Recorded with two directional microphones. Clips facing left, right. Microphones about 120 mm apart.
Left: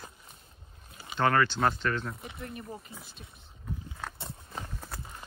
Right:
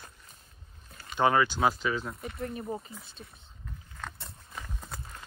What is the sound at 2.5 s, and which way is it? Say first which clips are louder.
Speech: right 6 dB; 25° right (ahead or behind).